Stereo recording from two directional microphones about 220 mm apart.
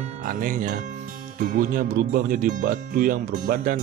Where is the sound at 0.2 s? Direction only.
40° right (ahead or behind).